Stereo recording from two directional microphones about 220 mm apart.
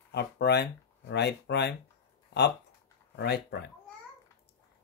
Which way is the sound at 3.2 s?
50° left (ahead or behind).